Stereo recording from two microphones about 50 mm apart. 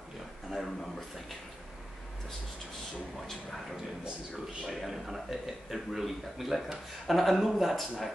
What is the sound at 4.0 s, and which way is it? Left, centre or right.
Speech, centre.